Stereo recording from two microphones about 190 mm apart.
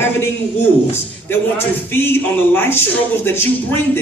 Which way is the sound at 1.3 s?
10° left (ahead or behind).